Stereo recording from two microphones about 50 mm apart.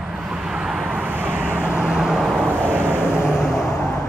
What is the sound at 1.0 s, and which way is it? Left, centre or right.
Vehicle, right.